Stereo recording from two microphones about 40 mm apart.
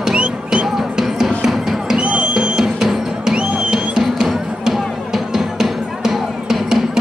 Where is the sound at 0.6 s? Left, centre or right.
Centre.